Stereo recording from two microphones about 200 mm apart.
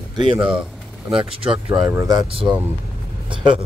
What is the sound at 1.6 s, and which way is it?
Speech, 25° right (ahead or behind).